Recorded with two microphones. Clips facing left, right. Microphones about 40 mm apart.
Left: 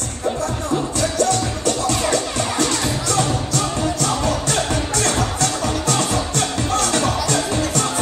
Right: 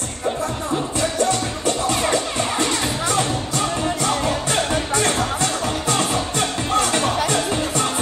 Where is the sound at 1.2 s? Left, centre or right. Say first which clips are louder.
Left 2 dB; right.